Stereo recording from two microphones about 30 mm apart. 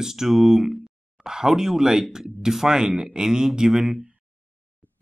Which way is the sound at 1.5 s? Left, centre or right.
Centre.